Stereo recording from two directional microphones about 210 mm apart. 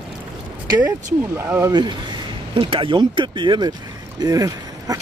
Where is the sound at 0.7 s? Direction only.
10° right (ahead or behind).